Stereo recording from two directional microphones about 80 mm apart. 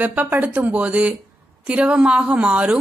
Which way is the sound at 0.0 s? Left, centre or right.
Right.